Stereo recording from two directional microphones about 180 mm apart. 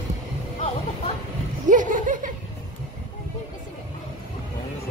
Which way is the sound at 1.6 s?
45° right (ahead or behind).